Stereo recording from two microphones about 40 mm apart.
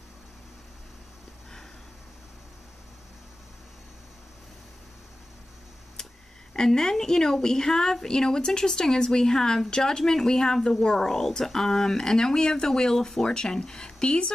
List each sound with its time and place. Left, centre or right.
6.5 s a woman's voice: centre